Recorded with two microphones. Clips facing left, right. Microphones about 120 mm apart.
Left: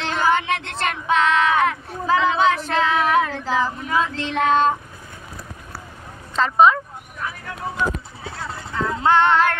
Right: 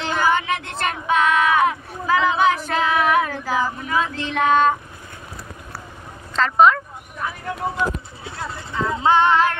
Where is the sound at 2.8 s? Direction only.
10° right (ahead or behind).